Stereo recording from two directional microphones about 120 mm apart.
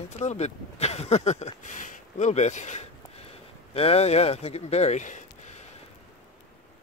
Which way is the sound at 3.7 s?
55° left (ahead or behind).